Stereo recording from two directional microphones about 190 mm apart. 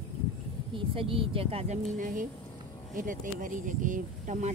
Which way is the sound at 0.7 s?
30° right (ahead or behind).